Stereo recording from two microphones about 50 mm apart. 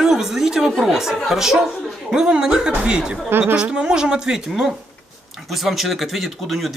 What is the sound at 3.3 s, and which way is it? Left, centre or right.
Speech, right.